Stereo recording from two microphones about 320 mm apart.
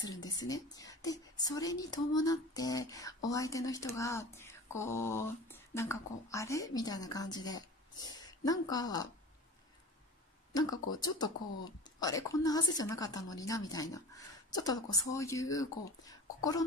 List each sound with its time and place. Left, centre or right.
0.3 s speech: centre
11.0 s speech: centre